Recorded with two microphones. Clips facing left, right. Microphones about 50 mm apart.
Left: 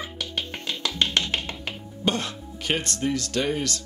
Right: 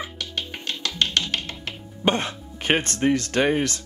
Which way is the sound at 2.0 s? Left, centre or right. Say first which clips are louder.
Right 3 dB; right.